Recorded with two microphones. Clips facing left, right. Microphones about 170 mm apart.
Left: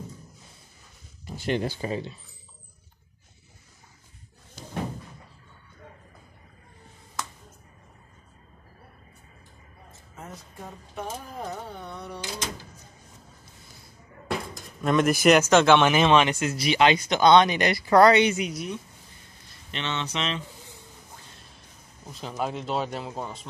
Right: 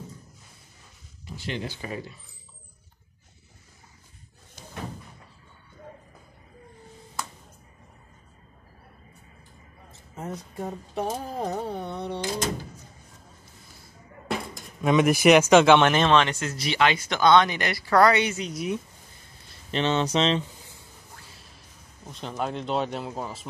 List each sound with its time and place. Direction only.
1.2 s speech: 50° left (ahead or behind)
1.8 s speech: 25° left (ahead or behind)
10.1 s a sound: 35° right (ahead or behind)
14.5 s speech: 5° right (ahead or behind)
15.8 s speech: 5° left (ahead or behind)
18.5 s speech: centre (ahead or behind)
19.7 s speech: 40° right (ahead or behind)
22.0 s speech: 5° left (ahead or behind)